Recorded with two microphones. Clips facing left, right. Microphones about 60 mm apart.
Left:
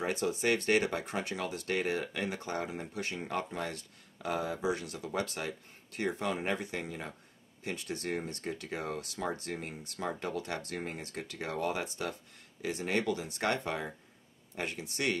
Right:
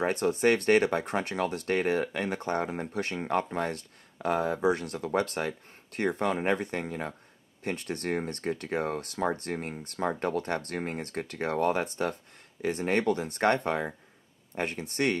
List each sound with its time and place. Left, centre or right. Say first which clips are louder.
0.0 s speech: right 6 dB; right